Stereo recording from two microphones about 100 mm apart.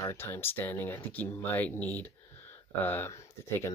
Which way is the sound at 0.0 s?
25° left (ahead or behind).